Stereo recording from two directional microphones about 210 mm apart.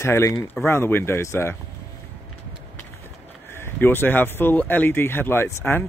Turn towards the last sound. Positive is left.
turn(degrees=10)  # may be behind; listen again after turning